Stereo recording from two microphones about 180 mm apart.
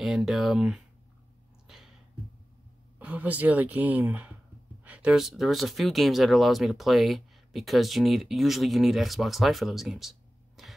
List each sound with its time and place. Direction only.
0.0 s speech: centre (ahead or behind)
3.0 s speech: 10° right (ahead or behind)